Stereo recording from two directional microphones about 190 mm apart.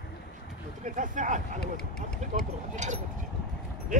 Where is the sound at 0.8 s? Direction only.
45° right (ahead or behind).